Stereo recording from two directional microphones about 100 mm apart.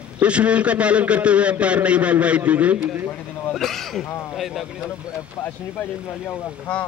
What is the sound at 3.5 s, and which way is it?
Speech, 5° left (ahead or behind).